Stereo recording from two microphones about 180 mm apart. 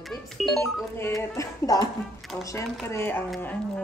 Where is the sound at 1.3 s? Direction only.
20° left (ahead or behind).